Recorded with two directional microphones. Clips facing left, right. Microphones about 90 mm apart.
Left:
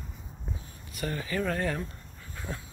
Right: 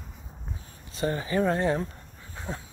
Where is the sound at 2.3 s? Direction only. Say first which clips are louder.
Right 2 dB; 20° right (ahead or behind).